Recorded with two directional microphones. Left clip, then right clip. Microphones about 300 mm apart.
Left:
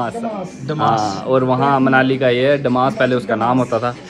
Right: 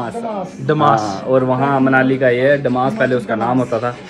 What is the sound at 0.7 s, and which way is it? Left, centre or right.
A man's voice, centre.